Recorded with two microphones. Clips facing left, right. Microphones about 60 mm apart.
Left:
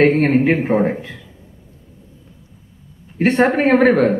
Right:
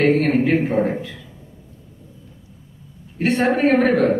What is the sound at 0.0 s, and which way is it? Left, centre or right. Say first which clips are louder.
A man's voice: left 3 dB; left.